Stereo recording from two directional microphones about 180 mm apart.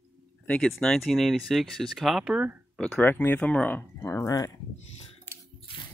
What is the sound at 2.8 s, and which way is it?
Speech, 5° left (ahead or behind).